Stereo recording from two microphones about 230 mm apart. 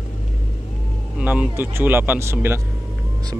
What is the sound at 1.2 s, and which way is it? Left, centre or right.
Speech, centre.